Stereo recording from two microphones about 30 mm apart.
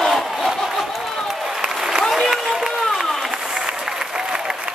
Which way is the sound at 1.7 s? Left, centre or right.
Centre.